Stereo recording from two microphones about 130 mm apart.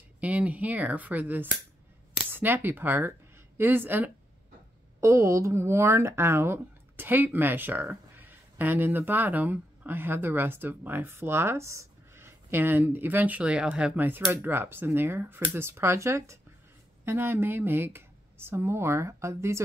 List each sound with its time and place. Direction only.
0.2 s speech: 10° right (ahead or behind)